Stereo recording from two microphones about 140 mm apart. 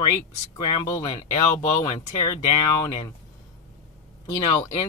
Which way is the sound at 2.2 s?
35° left (ahead or behind).